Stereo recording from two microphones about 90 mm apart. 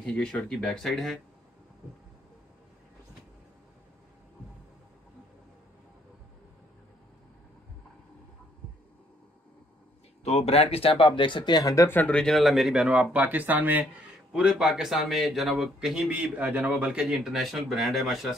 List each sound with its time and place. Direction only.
0.0 s speech: 10° left (ahead or behind)
10.5 s speech: 90° left; by 11.9 s 40° left (ahead or behind)
11.9 s speech: 20° left (ahead or behind)
12.2 s speech: centre (ahead or behind); by 13.8 s 20° right (ahead or behind)
14.3 s speech: 5° right (ahead or behind)